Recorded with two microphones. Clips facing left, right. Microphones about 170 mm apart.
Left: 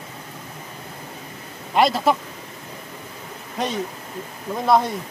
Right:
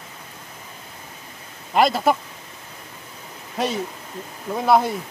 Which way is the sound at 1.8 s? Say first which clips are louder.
Even; centre (ahead or behind).